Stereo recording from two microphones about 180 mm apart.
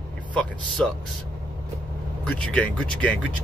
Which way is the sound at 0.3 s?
5° left (ahead or behind).